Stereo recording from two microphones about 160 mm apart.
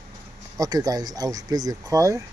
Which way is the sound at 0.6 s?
25° right (ahead or behind).